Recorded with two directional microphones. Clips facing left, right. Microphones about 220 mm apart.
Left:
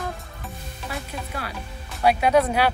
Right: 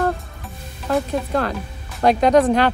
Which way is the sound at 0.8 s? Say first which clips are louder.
Right 13 dB; 90° right.